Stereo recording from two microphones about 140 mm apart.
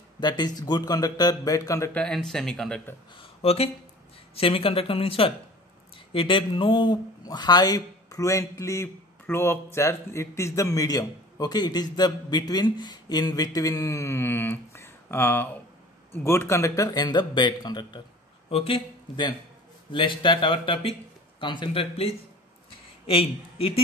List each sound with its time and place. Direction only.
0.2 s speech: 30° left (ahead or behind)
2.0 s speech: 5° left (ahead or behind)
3.2 s speech: 45° left (ahead or behind); by 18.0 s 30° left (ahead or behind)
18.5 s a man's voice: 40° left (ahead or behind)